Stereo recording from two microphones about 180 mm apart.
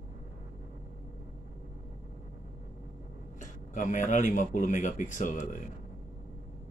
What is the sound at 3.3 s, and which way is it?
Speech, 45° left (ahead or behind).